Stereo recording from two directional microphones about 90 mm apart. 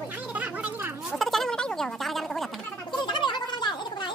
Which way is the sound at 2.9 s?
60° left (ahead or behind).